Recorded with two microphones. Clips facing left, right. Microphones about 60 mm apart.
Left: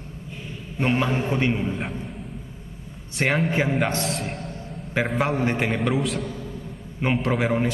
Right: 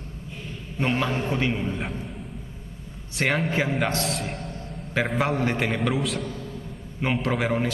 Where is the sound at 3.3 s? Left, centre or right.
Centre.